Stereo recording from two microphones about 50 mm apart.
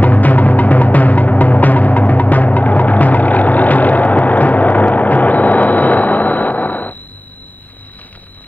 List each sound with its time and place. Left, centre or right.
0.0 s music: left